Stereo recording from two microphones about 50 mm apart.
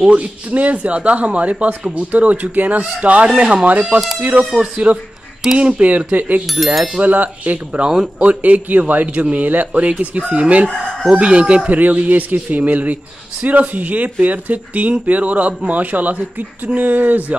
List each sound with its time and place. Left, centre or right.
0.0 s speech: right
6.5 s speech: centre
7.0 s speech: right
11.8 s speech: right